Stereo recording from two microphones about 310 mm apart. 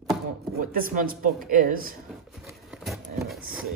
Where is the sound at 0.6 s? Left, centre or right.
Right.